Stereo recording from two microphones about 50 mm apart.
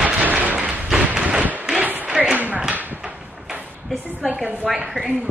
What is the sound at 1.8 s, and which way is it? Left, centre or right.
Applause, right.